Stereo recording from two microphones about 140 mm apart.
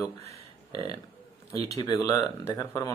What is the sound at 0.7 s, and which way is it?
Speech, 45° right (ahead or behind).